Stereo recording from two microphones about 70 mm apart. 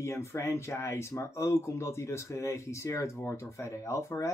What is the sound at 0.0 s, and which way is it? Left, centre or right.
Speech, left.